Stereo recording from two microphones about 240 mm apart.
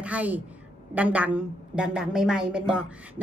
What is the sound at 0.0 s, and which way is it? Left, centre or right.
A woman's voice, centre.